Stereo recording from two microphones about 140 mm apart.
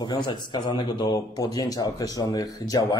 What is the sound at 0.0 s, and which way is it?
Speech, 35° left (ahead or behind).